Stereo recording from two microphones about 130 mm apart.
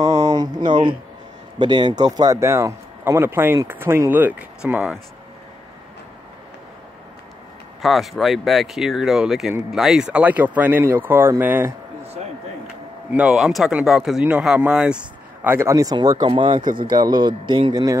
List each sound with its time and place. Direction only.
0.0 s a sound: 30° right (ahead or behind)
1.6 s speech: 35° right (ahead or behind); by 5.0 s 5° right (ahead or behind)
7.8 s speech: centre (ahead or behind); by 11.7 s 15° right (ahead or behind)
13.1 s speech: 5° right (ahead or behind)
15.4 s speech: 20° right (ahead or behind)